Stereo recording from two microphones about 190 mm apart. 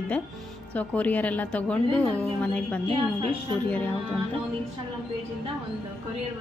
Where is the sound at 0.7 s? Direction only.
10° left (ahead or behind).